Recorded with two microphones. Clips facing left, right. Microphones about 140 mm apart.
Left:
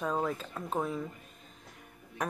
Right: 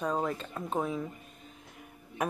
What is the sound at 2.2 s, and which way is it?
Speech, 5° right (ahead or behind).